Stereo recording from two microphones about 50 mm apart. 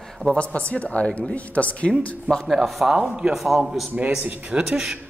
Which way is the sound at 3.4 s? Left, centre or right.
Centre.